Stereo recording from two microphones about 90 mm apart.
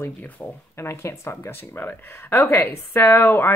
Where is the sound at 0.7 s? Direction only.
30° left (ahead or behind).